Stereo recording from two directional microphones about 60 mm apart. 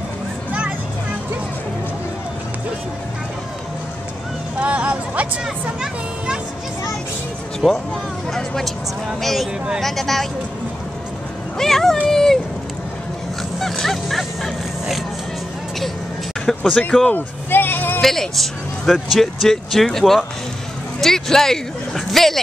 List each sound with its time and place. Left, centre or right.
4.6 s a sound: right
5.8 s a child's voice: centre
7.6 s speech: centre
11.5 s speech: centre
12.1 s a sound: centre
13.6 s dog: centre
16.4 s a sound: centre
17.1 s vehicle: left
18.0 s speech: centre